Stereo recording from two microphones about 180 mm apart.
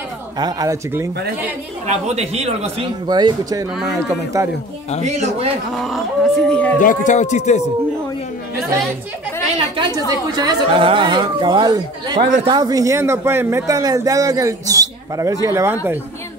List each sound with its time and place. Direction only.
0.4 s a woman's voice: 20° right (ahead or behind)
1.9 s speech: 35° right (ahead or behind)
3.1 s a woman's voice: 25° right (ahead or behind)
5.0 s speech: 40° right (ahead or behind)
5.8 s speech: centre (ahead or behind)
6.8 s speech: 45° left (ahead or behind)
9.6 s a woman's voice: 25° right (ahead or behind)